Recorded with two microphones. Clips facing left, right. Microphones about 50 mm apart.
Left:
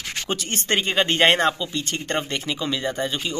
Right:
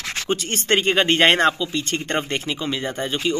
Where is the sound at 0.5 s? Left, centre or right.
Right.